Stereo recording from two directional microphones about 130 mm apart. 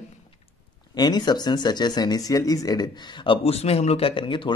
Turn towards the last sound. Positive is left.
turn(degrees=40)  # may be behind; listen again after turning